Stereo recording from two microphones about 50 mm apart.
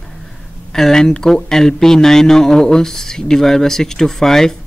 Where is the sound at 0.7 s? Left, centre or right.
Centre.